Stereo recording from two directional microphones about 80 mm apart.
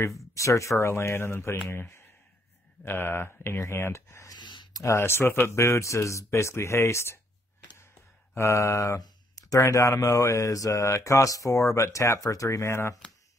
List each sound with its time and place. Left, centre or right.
0.3 s speech: left
4.4 s a sound: left
4.7 s speech: left
8.4 s speech: left
9.0 s speech: left